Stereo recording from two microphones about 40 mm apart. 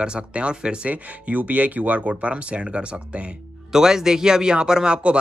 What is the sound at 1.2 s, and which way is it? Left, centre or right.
Speech, right.